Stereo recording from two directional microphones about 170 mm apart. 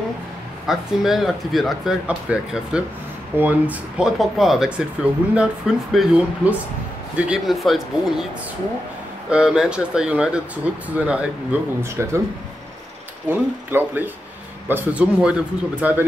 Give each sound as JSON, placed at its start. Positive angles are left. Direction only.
{"t": 0.7, "sound": "speech", "side_deg": 0}
{"t": 9.3, "sound": "speech", "side_deg": -5}
{"t": 13.3, "sound": "speech", "side_deg": -10}